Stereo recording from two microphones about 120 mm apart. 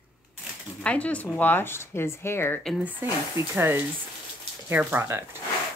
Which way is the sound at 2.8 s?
15° right (ahead or behind).